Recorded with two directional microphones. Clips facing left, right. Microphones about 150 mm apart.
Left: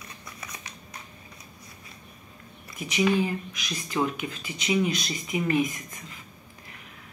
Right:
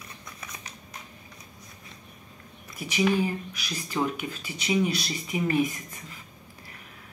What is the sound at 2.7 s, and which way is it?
Speech, 35° right (ahead or behind).